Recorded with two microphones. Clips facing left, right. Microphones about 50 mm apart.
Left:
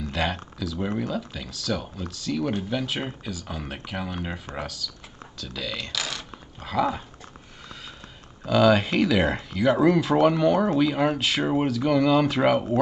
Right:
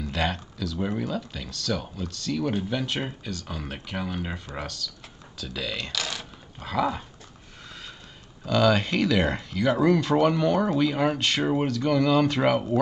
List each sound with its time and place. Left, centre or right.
0.0 s speech: centre
8.5 s speech: centre